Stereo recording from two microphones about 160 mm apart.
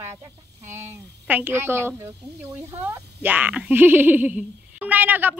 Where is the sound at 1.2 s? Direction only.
10° right (ahead or behind).